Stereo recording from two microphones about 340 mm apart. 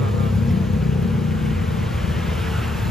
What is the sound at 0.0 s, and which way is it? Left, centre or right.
Vehicle, centre.